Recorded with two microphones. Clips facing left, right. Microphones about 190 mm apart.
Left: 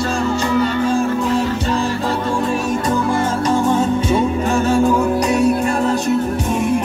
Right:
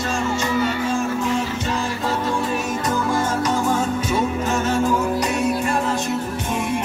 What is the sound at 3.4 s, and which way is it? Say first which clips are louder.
Music: left 4 dB; 30° left (ahead or behind).